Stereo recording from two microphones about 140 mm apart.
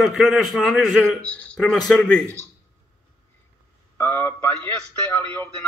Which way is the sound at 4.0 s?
15° left (ahead or behind).